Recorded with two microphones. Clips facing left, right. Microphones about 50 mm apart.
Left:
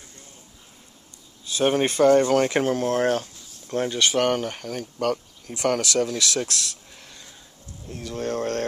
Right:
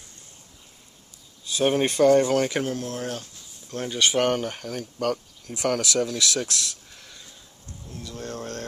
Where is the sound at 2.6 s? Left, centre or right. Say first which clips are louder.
Left 8 dB; left.